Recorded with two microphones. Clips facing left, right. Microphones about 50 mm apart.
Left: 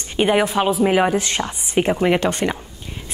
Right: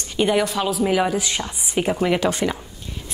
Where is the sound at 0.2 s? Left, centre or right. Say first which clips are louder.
Left 3 dB; left.